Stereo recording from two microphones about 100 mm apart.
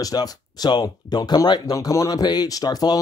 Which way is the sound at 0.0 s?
40° left (ahead or behind).